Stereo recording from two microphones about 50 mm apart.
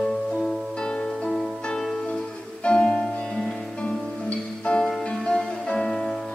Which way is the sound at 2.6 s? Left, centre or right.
Left.